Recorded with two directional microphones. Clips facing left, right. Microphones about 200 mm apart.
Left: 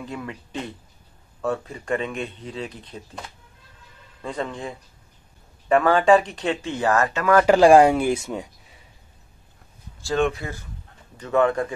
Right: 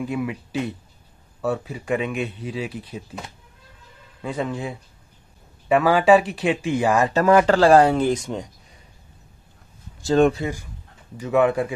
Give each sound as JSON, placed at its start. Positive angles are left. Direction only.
{"t": 0.0, "sound": "speech", "side_deg": -10}
{"t": 4.2, "sound": "speech", "side_deg": -5}
{"t": 7.4, "sound": "speech", "side_deg": 15}
{"t": 10.1, "sound": "speech", "side_deg": -35}
{"t": 10.4, "sound": "speech", "side_deg": -15}